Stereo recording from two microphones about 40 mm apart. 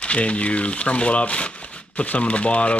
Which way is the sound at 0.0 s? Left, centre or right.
Left.